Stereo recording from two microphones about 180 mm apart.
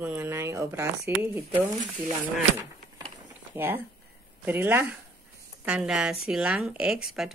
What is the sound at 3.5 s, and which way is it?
Speech, 10° right (ahead or behind).